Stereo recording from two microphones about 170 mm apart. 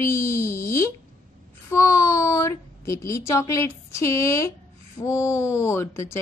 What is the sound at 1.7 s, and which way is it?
Speech, 15° left (ahead or behind).